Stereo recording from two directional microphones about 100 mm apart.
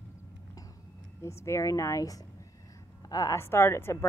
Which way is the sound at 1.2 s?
30° left (ahead or behind).